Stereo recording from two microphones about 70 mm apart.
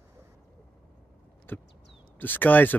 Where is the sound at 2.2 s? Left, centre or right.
Left.